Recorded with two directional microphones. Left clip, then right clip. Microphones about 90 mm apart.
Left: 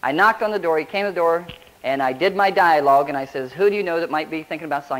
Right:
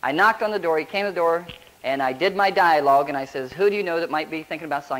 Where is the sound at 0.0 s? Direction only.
35° right (ahead or behind).